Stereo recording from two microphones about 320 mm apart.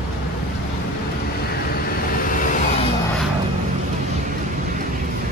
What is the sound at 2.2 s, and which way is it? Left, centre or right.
Vehicle, left.